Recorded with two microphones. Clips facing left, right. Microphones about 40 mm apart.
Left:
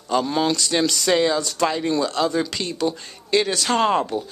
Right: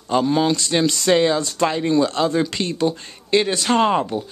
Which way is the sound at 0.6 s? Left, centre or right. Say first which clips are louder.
Right 2 dB; centre.